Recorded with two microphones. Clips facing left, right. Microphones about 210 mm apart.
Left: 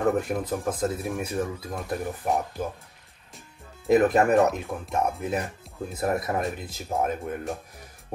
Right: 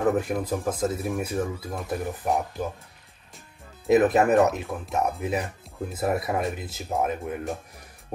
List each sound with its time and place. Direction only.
0.0 s speech: centre (ahead or behind)
3.8 s speech: 5° right (ahead or behind)